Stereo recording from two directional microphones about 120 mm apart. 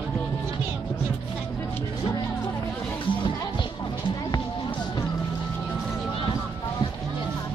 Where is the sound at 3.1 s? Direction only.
45° left (ahead or behind).